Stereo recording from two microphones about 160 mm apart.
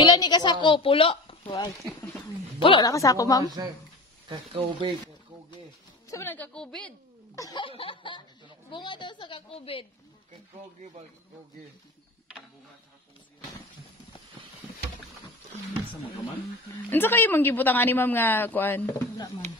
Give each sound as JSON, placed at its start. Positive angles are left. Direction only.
{"t": 0.0, "sound": "a woman's voice", "side_deg": 25}
{"t": 2.6, "sound": "a woman's voice", "side_deg": 30}
{"t": 2.9, "sound": "a woman's voice", "side_deg": 20}
{"t": 3.4, "sound": "speech", "side_deg": -25}
{"t": 4.5, "sound": "speech", "side_deg": -40}
{"t": 6.0, "sound": "speech", "side_deg": 15}
{"t": 7.3, "sound": "a woman's voice", "side_deg": 25}
{"t": 16.9, "sound": "speech", "side_deg": 10}